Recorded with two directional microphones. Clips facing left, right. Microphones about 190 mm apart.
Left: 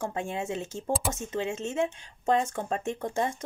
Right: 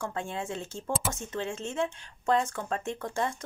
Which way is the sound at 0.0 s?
20° left (ahead or behind).